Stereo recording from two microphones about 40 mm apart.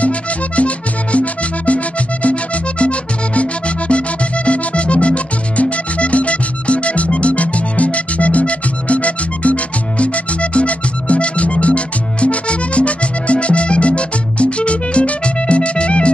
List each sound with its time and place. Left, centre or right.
0.6 s music: left